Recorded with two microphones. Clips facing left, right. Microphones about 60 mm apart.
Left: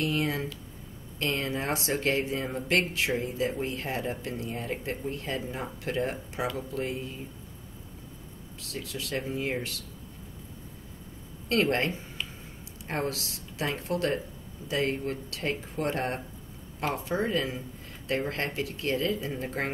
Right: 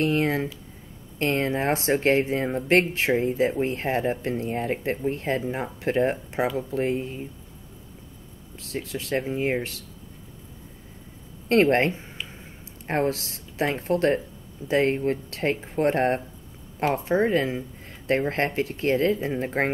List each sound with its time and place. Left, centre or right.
0.0 s speech: right
8.5 s speech: right
11.4 s speech: right